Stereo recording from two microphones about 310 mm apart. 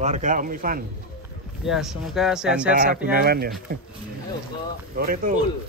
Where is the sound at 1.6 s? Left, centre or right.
Centre.